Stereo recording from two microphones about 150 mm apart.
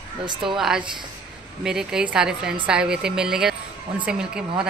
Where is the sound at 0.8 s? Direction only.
30° right (ahead or behind).